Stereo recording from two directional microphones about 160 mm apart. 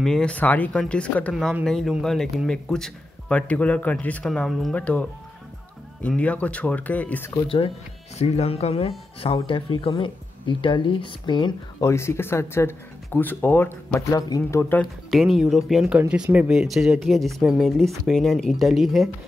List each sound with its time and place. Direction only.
0.0 s speech: 5° left (ahead or behind)
6.0 s speech: 10° left (ahead or behind)
7.3 s speech: 35° left (ahead or behind)
11.9 s speech: 15° left (ahead or behind)
15.0 s speech: centre (ahead or behind)